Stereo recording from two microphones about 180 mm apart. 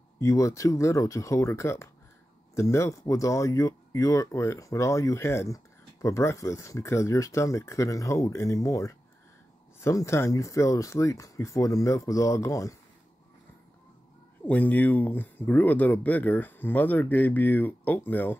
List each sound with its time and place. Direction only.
0.2 s speech: 15° left (ahead or behind)
14.4 s speech: 10° left (ahead or behind)